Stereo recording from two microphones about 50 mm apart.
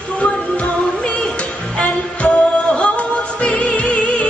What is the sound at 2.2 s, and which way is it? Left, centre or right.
Music, left.